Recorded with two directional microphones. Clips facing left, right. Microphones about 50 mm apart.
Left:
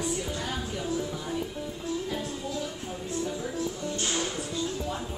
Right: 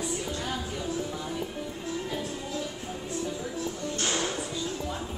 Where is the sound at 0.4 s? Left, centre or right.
Centre.